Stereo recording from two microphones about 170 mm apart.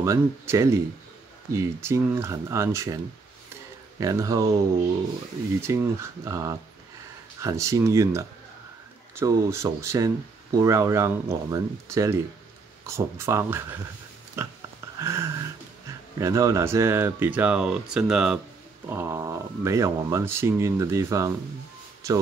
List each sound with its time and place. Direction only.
0.0 s speech: 15° right (ahead or behind)
4.0 s speech: 20° right (ahead or behind)
5.6 s speech: 15° right (ahead or behind)
15.0 s a sound: 15° right (ahead or behind)
16.2 s speech: 20° right (ahead or behind); by 18.4 s 5° right (ahead or behind)
18.9 s speech: 15° right (ahead or behind)